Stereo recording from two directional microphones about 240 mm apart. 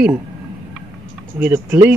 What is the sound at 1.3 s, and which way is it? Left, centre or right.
Speech, centre.